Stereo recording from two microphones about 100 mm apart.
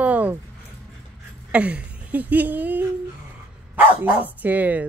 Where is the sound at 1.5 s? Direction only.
15° right (ahead or behind).